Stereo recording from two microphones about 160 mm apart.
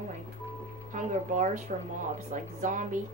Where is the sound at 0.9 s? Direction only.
50° right (ahead or behind).